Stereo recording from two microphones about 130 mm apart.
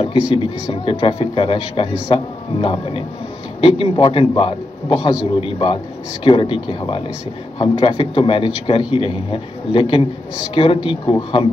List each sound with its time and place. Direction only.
0.4 s a man's voice: 45° left (ahead or behind)